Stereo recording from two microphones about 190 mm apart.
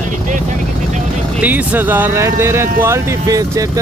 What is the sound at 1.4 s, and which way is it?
Speech, 10° right (ahead or behind).